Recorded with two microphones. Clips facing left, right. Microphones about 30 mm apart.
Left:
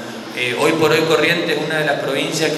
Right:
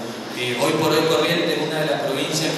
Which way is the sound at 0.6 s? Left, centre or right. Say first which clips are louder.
Left 4 dB; left.